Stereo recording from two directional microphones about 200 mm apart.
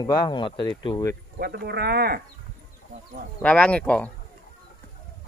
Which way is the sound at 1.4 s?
55° right (ahead or behind).